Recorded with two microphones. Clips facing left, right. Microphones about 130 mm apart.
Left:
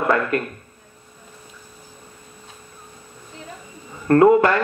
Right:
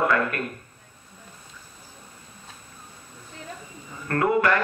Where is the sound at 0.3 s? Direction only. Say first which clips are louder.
Left 8 dB; 25° left (ahead or behind).